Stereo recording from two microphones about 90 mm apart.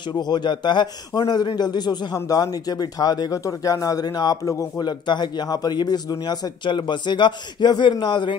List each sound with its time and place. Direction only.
0.1 s speech: 50° left (ahead or behind)
4.8 s a man's voice: 55° left (ahead or behind)